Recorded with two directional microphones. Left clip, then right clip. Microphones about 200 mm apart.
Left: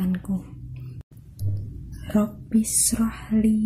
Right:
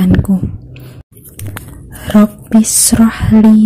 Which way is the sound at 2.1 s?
35° right (ahead or behind).